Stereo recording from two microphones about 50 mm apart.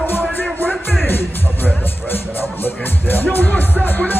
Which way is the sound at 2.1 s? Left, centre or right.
Left.